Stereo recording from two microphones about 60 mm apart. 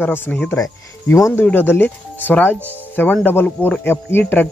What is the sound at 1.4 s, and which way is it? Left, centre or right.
A man's voice, left.